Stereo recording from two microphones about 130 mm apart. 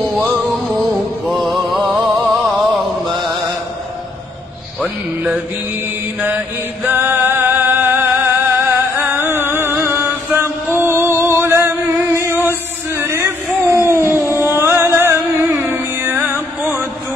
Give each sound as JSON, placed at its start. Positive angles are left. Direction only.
{"t": 1.2, "sound": "music", "side_deg": 0}
{"t": 4.8, "sound": "music", "side_deg": -5}
{"t": 6.2, "sound": "chant", "side_deg": -15}
{"t": 13.8, "sound": "a sound", "side_deg": -15}
{"t": 14.7, "sound": "music", "side_deg": -20}